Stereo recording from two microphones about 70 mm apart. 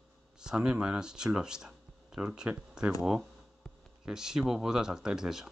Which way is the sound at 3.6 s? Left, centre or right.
Centre.